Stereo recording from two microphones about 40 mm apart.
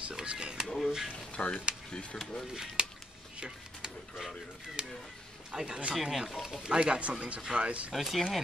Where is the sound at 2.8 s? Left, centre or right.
Right.